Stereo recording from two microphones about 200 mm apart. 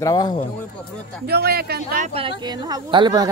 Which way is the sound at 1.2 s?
50° right (ahead or behind).